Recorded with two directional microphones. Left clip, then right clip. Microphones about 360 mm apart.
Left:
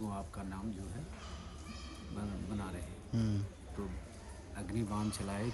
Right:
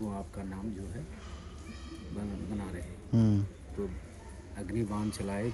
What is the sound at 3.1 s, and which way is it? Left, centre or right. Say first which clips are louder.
Speech: right 9 dB; centre.